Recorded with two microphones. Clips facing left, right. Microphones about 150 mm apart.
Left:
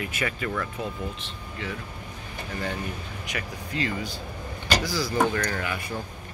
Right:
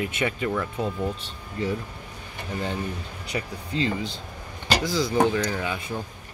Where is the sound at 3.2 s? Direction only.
30° right (ahead or behind).